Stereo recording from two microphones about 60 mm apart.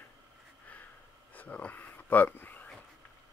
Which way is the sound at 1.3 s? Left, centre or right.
Left.